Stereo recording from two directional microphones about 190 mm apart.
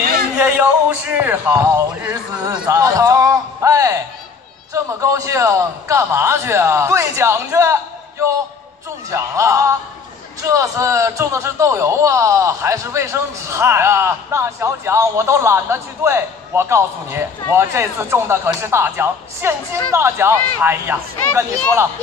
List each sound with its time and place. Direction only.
0.4 s a man's voice: 10° right (ahead or behind)